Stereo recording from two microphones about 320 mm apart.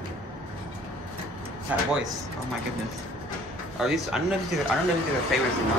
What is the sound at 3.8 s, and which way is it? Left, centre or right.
Speech, centre.